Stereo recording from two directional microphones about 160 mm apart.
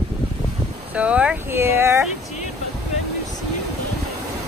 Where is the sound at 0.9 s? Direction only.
10° right (ahead or behind).